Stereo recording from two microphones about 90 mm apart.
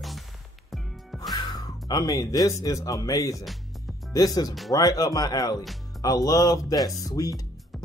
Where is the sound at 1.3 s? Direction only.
50° left (ahead or behind).